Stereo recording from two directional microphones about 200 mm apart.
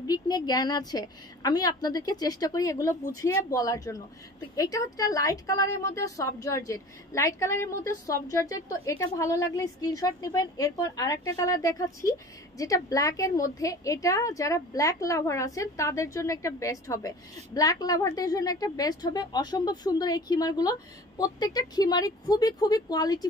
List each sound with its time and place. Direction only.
0.0 s a woman's voice: 20° left (ahead or behind)